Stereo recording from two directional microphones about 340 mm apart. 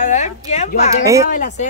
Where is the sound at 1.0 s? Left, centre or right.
Centre.